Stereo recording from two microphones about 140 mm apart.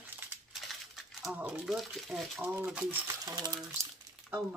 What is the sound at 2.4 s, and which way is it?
Speech, 15° right (ahead or behind).